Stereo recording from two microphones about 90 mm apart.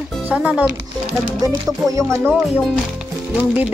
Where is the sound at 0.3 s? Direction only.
15° right (ahead or behind).